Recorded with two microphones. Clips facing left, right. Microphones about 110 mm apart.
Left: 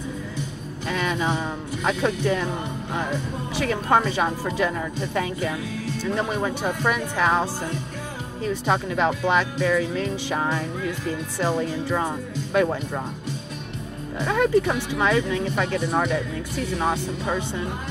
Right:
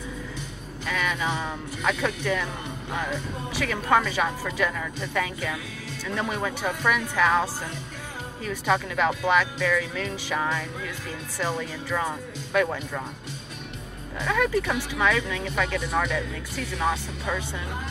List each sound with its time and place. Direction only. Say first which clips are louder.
0.8 s speech: left 3 dB; 30° left (ahead or behind)
8.5 s speech: left 2 dB; 25° left (ahead or behind)
14.2 s speech: left 4 dB; 30° left (ahead or behind)